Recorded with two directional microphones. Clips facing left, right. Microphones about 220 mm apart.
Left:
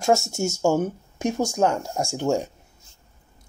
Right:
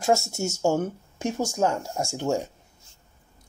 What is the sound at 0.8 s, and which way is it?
Speech, 15° left (ahead or behind).